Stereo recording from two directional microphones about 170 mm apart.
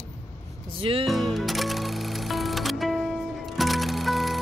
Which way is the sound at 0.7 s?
30° right (ahead or behind).